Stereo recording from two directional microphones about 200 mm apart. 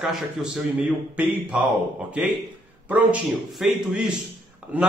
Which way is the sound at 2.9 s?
5° right (ahead or behind).